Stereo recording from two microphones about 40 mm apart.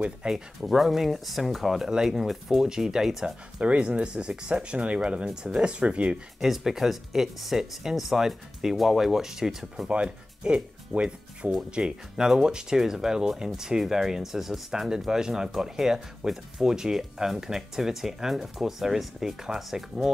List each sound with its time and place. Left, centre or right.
0.2 s speech: right
0.6 s speech: centre
3.8 s speech: right
5.0 s speech: centre
6.4 s speech: centre
10.0 s speech: right